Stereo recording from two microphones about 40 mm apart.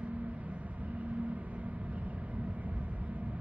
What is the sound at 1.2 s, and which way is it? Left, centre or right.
Vehicle, right.